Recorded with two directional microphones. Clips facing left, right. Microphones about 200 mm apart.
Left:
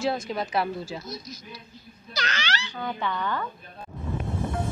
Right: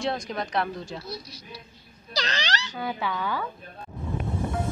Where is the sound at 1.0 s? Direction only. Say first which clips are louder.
Even; 30° right (ahead or behind).